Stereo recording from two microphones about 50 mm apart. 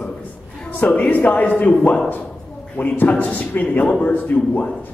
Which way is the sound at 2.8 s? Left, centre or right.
Left.